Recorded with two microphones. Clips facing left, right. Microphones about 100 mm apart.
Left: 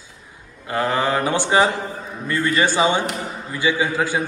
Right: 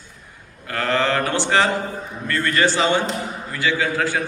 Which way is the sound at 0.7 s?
15° left (ahead or behind).